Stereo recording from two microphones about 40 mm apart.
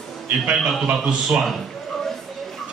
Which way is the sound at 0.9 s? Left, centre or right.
Right.